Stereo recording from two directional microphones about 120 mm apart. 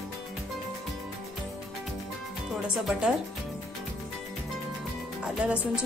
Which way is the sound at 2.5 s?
Centre (ahead or behind).